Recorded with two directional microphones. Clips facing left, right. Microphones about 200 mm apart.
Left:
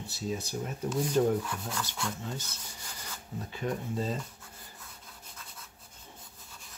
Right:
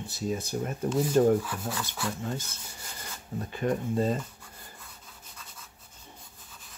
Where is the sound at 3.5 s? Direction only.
55° right (ahead or behind).